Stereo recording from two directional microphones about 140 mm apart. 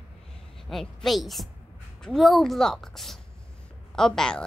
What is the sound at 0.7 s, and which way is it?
Speech, centre (ahead or behind).